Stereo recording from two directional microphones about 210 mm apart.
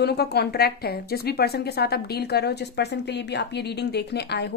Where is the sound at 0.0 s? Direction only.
50° left (ahead or behind).